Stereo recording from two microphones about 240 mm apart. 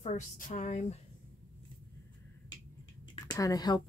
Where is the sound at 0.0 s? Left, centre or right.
Left.